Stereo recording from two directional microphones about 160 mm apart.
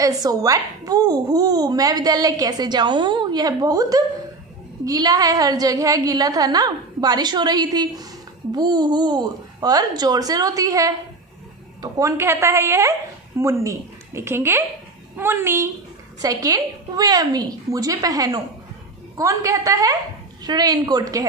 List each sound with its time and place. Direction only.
0.0 s a woman's voice: 20° right (ahead or behind)